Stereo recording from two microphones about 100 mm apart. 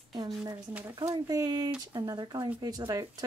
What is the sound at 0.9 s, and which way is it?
Speech, 50° right (ahead or behind).